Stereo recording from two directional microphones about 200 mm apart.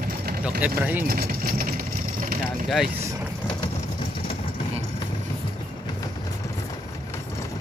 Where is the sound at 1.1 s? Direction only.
45° right (ahead or behind).